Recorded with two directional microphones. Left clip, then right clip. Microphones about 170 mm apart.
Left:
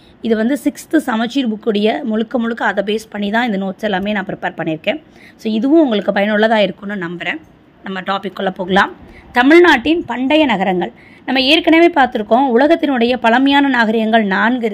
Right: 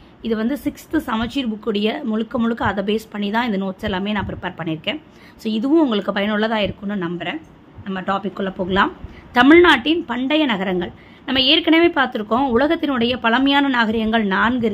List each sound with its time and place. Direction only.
0.2 s a woman's voice: 25° left (ahead or behind)
9.3 s a woman's voice: 15° left (ahead or behind)